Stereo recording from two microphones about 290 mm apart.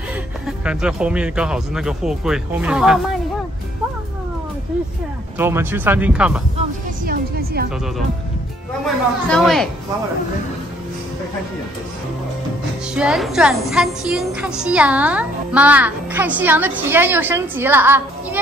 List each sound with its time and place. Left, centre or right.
0.5 s a woman's voice: centre
5.4 s speech: centre
7.1 s a woman's voice: right
8.8 s a woman's voice: centre
12.9 s a woman's voice: centre